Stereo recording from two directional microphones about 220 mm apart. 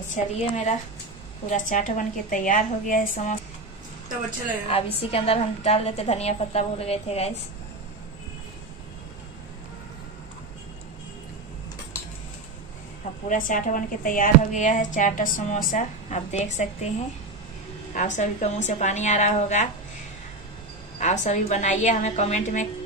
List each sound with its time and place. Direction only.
0.1 s speech: 35° left (ahead or behind)
4.6 s a woman's voice: 25° left (ahead or behind)
13.3 s speech: 35° left (ahead or behind)
17.9 s speech: 35° left (ahead or behind)
21.0 s speech: 30° left (ahead or behind)